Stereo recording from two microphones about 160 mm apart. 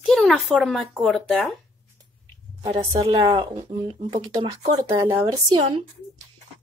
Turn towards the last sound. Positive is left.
turn(degrees=-25)  # may be behind; listen again after turning